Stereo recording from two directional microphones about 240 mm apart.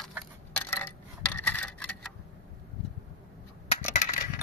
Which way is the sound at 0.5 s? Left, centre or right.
Centre.